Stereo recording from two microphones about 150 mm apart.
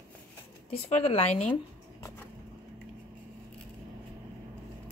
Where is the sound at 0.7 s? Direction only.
40° left (ahead or behind).